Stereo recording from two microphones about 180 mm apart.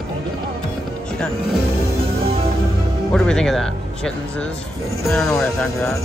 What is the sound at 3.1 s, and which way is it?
Speech, 5° left (ahead or behind).